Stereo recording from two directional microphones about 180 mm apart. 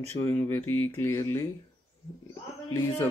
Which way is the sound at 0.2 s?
10° left (ahead or behind).